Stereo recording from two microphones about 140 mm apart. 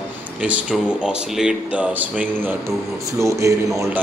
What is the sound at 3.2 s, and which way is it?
Speech, 20° right (ahead or behind).